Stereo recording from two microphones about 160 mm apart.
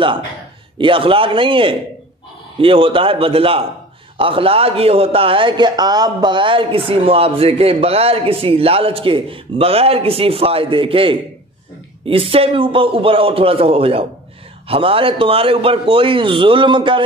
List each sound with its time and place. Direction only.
0.7 s a man's voice: 35° right (ahead or behind)